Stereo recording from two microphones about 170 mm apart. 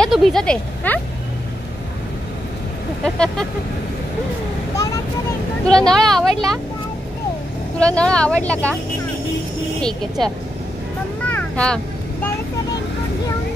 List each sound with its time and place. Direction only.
0.0 s speech: centre (ahead or behind)
3.0 s speech: 5° left (ahead or behind)
5.7 s speech: 5° left (ahead or behind)
7.8 s speech: 5° left (ahead or behind)
9.8 s speech: 5° left (ahead or behind)
11.2 s vehicle: 10° left (ahead or behind)